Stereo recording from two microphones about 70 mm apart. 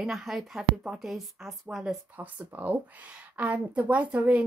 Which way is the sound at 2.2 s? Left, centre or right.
Right.